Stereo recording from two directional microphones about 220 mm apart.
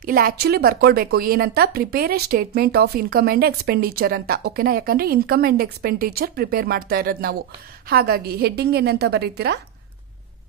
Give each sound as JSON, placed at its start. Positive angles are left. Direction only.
{"t": 0.0, "sound": "a woman's voice", "side_deg": -40}